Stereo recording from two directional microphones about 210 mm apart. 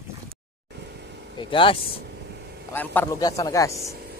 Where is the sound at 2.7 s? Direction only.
10° left (ahead or behind).